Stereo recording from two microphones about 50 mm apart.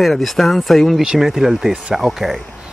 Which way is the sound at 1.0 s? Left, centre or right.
Centre.